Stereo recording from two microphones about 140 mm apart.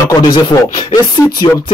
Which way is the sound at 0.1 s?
30° left (ahead or behind).